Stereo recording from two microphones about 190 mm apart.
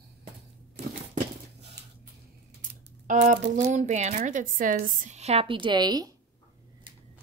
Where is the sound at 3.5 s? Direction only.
40° right (ahead or behind); by 6.1 s 20° right (ahead or behind).